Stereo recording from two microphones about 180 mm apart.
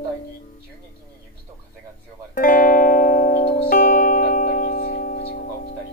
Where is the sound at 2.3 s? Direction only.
50° left (ahead or behind).